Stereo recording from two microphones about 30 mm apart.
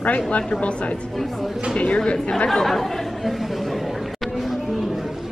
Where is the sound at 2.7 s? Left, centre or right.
Centre.